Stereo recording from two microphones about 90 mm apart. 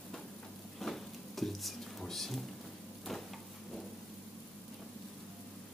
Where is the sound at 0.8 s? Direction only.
5° left (ahead or behind).